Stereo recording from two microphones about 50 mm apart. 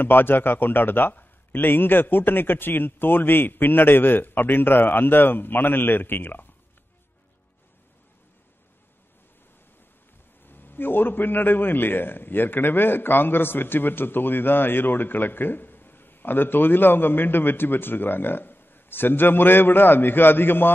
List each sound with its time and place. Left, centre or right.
0.0 s a man's voice: left
10.4 s a man's voice: left